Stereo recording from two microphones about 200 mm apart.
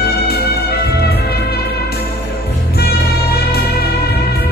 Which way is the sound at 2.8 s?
50° left (ahead or behind).